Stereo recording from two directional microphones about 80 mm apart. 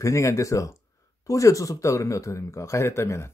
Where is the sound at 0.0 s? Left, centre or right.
Left.